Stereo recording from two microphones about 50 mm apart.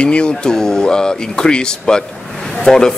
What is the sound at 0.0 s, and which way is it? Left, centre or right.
A man's voice, centre.